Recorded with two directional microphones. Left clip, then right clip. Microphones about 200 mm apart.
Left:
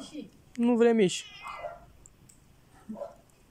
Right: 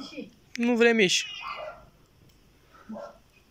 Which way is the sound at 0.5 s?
15° left (ahead or behind).